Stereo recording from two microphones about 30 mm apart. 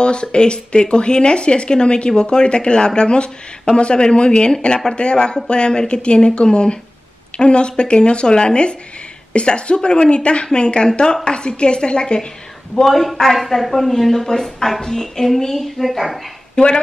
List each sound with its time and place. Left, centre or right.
0.0 s speech: left
12.8 s a woman's voice: centre
14.8 s a woman's voice: centre
16.5 s speech: left